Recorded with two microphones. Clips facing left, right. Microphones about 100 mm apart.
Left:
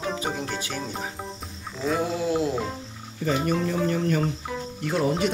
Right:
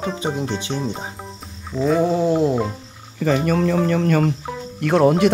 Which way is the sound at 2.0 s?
35° right (ahead or behind).